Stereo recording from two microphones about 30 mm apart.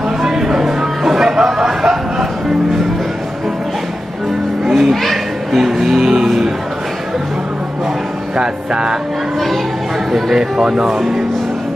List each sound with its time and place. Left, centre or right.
0.2 s a sound: centre
4.6 s children playing: centre
5.0 s children playing: centre
8.4 s speech: right
10.3 s speech: centre